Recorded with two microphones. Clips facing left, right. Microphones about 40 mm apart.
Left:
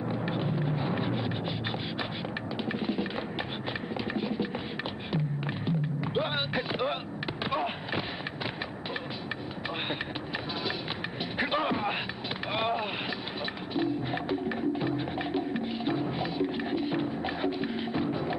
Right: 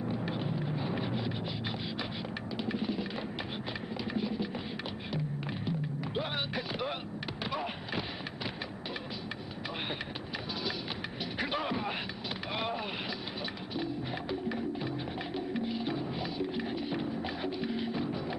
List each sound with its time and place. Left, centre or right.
0.0 s eruption: centre
2.5 s a sound: left
5.7 s music: left
7.5 s a sound: centre
11.3 s music: centre
12.5 s boat: centre
13.7 s music: left